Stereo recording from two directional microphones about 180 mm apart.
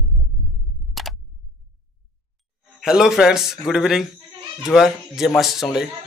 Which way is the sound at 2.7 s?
5° right (ahead or behind).